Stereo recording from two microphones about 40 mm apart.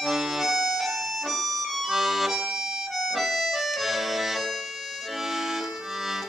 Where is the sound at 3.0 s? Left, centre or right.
Centre.